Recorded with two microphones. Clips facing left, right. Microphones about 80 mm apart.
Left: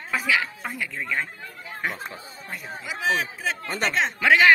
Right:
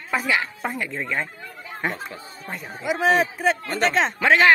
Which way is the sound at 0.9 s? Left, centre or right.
Centre.